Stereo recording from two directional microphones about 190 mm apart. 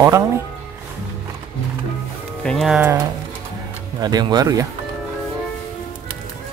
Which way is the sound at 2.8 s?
15° right (ahead or behind).